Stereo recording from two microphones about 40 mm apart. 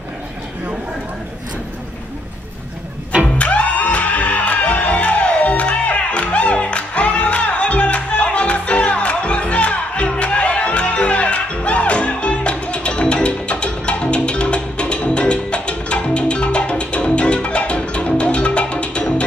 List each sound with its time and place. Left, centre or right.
3.3 s music: left